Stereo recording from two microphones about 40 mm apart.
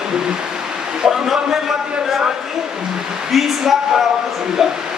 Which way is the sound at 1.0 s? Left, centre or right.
Centre.